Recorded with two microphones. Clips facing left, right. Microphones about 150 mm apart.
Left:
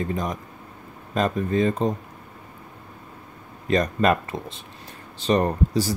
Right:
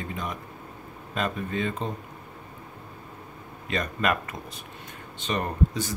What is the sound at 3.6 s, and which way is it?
Speech, 40° left (ahead or behind).